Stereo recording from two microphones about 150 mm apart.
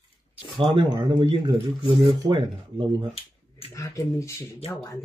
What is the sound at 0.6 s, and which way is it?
Speech, 30° right (ahead or behind).